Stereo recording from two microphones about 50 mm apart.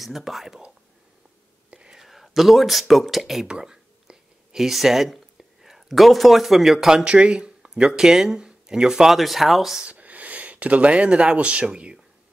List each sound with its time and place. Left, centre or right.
0.0 s speech: centre
1.9 s speech: centre
3.4 s a sound: centre
7.1 s speech: centre
9.8 s speech: right